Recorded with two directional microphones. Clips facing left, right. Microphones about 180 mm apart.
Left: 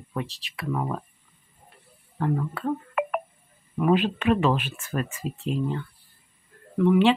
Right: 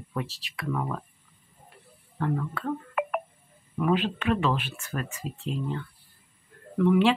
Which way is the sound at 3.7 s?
15° left (ahead or behind).